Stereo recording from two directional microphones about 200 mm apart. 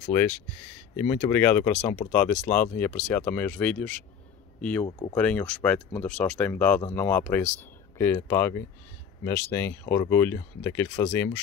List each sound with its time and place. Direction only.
0.1 s speech: 10° left (ahead or behind)
4.8 s speech: 25° left (ahead or behind)
5.1 s speech: 5° left (ahead or behind)